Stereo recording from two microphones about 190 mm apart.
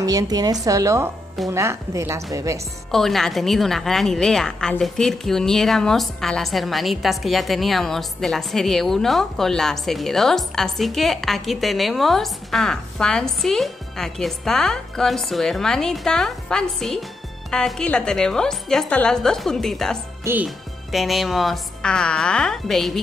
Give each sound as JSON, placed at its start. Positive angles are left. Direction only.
{"t": 0.0, "sound": "a woman's voice", "side_deg": -20}
{"t": 2.9, "sound": "a woman's voice", "side_deg": 0}